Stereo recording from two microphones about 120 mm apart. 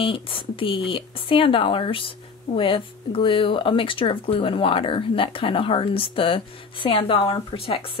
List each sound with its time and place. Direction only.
0.0 s speech: 50° left (ahead or behind)